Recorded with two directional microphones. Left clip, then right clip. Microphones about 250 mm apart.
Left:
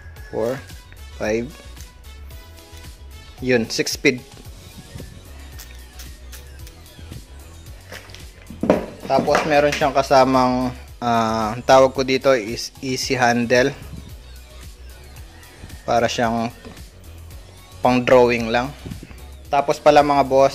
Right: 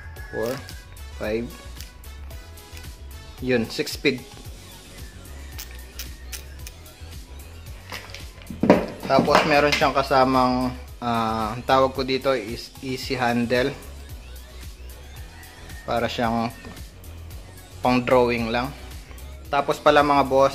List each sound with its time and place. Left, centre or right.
0.3 s speech: left
3.4 s speech: left
9.0 s speech: centre
15.8 s speech: left
17.8 s speech: centre